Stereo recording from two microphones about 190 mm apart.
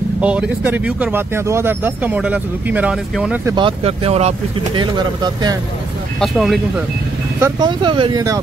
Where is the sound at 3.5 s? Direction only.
25° right (ahead or behind).